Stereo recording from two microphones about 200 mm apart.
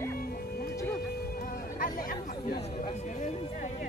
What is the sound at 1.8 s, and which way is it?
Speech, 45° left (ahead or behind).